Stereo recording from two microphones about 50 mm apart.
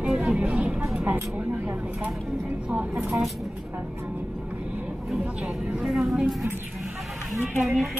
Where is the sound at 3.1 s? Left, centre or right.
Centre.